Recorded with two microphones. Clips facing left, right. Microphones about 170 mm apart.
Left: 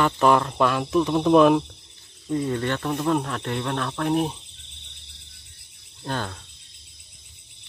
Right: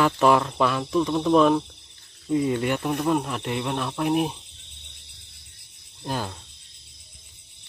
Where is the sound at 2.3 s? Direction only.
5° right (ahead or behind).